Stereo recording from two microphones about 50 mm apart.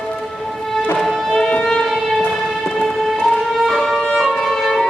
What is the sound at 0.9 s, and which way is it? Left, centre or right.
Music, centre.